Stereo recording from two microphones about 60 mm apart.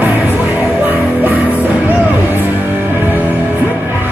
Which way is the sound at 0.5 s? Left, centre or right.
Right.